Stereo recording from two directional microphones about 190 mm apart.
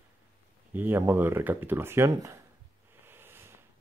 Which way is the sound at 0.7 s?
10° right (ahead or behind).